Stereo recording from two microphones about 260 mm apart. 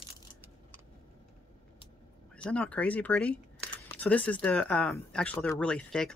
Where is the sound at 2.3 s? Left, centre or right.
Centre.